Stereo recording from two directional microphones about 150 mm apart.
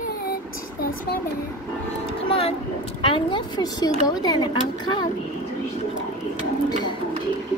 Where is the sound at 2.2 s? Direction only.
40° left (ahead or behind).